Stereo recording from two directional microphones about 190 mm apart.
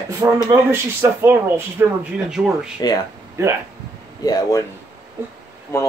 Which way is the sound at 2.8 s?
20° left (ahead or behind).